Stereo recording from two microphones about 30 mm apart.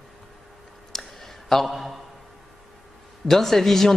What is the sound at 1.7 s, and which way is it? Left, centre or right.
Speech, centre.